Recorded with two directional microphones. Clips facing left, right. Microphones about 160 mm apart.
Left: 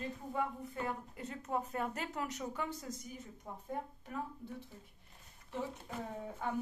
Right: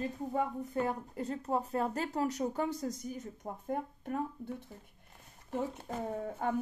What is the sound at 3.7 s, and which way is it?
Speech, 55° right (ahead or behind).